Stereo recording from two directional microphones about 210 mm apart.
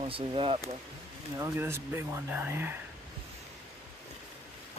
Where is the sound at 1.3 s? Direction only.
15° right (ahead or behind).